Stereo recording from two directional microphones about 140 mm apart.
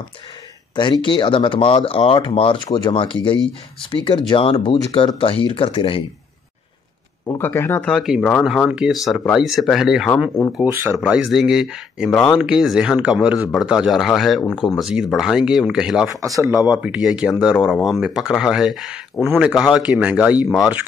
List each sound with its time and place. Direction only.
1.0 s speech: 35° left (ahead or behind)
7.2 s speech: 15° left (ahead or behind)
7.9 s speech: centre (ahead or behind)
16.3 s speech: 15° right (ahead or behind)